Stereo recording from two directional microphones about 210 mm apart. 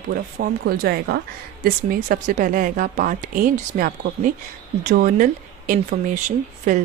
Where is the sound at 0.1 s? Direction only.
45° right (ahead or behind).